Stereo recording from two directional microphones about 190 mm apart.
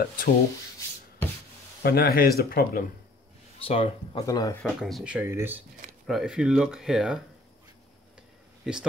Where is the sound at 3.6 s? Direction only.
30° left (ahead or behind).